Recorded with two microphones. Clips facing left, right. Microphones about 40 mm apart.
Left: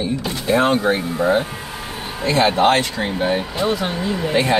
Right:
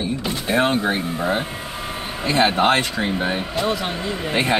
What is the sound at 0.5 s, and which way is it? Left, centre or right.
Speech, centre.